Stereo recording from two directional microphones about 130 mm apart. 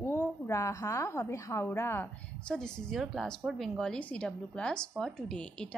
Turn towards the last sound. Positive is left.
turn(degrees=5)  # may be behind; listen again after turning